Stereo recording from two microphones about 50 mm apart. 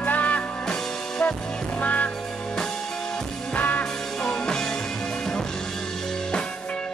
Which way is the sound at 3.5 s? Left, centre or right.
Left.